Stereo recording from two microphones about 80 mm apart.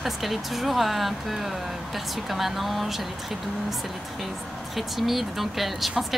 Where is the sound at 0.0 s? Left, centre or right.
Centre.